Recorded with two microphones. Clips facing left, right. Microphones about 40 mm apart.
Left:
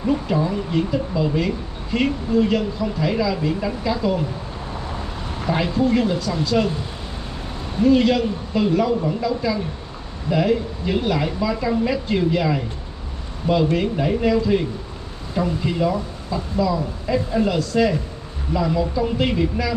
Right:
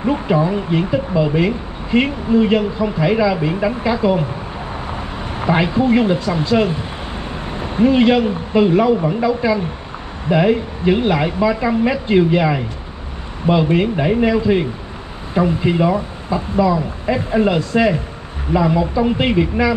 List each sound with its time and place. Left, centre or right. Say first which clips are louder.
0.0 s speech: right 4 dB; right
7.5 s speech: right 2 dB; right